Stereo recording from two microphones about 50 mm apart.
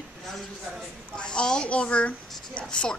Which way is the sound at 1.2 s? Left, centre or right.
Centre.